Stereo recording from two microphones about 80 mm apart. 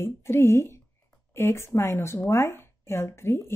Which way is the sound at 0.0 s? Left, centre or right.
Left.